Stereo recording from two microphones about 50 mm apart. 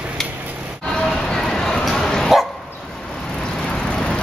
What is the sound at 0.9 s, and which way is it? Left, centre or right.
Music, centre.